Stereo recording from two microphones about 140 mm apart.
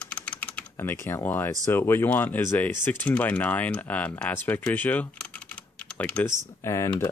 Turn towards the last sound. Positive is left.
turn(degrees=20)  # may be behind; listen again after turning